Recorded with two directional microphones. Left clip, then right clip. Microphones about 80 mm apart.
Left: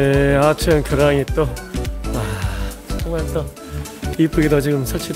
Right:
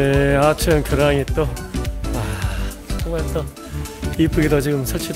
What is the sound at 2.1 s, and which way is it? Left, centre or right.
Music, left.